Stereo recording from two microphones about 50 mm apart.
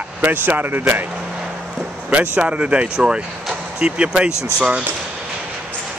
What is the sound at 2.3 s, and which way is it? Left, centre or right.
Speech, right.